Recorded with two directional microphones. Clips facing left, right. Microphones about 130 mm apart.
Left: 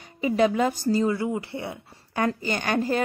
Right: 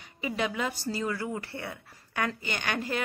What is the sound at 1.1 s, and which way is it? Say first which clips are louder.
Speech: left 7 dB; 20° left (ahead or behind).